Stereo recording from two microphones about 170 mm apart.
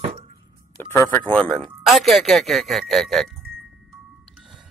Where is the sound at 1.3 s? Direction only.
5° left (ahead or behind).